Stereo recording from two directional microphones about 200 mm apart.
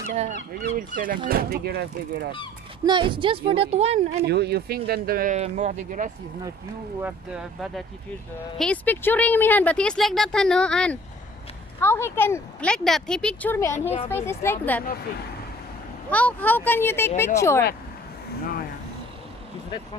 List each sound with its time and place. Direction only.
0.1 s speech: 35° right (ahead or behind); by 2.3 s 50° right (ahead or behind)
2.8 s speech: 25° right (ahead or behind)
4.3 s speech: 55° right (ahead or behind)
7.0 s speech: 5° right (ahead or behind); by 14.8 s 10° left (ahead or behind)
16.1 s speech: 5° left (ahead or behind)